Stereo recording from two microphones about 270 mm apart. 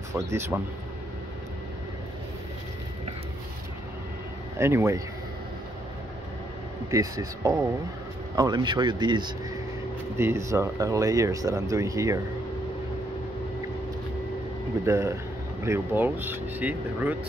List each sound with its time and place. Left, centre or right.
0.3 s speech: centre
4.6 s speech: centre
6.9 s speech: centre
14.9 s speech: centre